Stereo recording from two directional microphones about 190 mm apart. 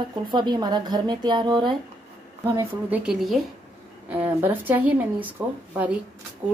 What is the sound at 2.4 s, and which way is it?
Speech, 10° right (ahead or behind).